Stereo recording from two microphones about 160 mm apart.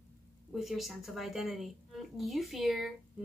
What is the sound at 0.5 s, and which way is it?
A woman's voice, centre (ahead or behind).